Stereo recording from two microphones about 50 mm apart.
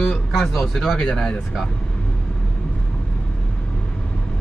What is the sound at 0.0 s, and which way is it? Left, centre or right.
Speech, centre.